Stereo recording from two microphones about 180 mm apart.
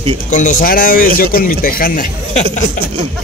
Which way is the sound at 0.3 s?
45° left (ahead or behind).